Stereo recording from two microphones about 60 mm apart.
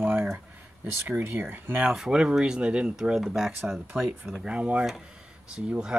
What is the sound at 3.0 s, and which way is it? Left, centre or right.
Speech, centre.